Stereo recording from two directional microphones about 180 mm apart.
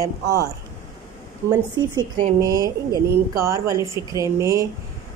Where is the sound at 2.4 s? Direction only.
20° right (ahead or behind).